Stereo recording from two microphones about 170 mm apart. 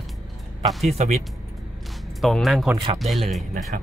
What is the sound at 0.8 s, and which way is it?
Speech, 40° right (ahead or behind).